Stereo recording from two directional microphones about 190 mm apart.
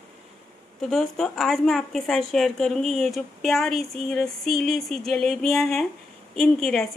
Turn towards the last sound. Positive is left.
turn(degrees=0)  # may be behind; listen again after turning